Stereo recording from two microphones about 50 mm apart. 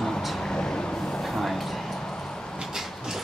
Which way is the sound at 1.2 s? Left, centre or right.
Centre.